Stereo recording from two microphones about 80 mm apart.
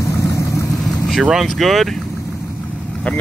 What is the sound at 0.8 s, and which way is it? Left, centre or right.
Vehicle, centre.